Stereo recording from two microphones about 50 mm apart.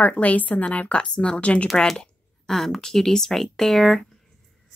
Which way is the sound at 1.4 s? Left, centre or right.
Left.